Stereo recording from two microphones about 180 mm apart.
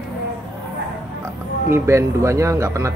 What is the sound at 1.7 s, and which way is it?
A man's voice, 15° right (ahead or behind).